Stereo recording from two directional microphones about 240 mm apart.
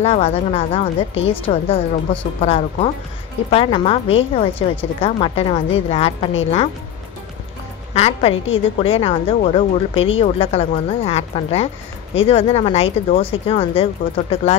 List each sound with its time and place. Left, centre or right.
0.0 s a woman's voice: left
7.9 s a woman's voice: left